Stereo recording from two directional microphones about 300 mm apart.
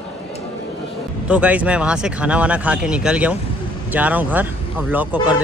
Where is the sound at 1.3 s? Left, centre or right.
Centre.